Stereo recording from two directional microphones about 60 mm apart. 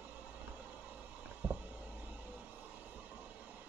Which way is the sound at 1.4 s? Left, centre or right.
Right.